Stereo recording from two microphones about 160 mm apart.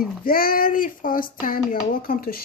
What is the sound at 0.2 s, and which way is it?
Speech, 65° left (ahead or behind).